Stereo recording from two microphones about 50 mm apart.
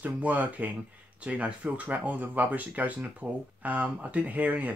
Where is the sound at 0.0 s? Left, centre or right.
Right.